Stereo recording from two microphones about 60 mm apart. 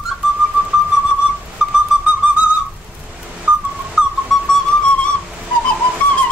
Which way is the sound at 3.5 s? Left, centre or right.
Right.